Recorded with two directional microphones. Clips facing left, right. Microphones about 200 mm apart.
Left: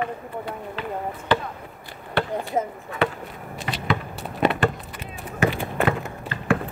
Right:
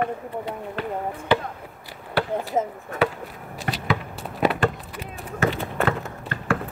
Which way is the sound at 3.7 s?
50° right (ahead or behind).